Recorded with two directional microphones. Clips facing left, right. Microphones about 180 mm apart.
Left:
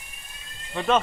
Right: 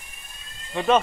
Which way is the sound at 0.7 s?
10° right (ahead or behind).